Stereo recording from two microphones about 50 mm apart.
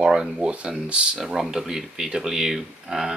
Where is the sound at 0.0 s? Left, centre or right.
Centre.